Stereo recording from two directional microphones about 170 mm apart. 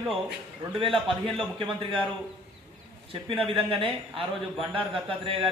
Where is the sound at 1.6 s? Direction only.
30° right (ahead or behind).